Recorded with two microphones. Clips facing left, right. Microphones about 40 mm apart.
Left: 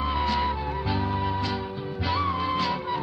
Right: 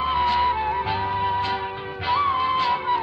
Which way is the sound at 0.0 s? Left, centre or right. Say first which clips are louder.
Right 5 dB; right.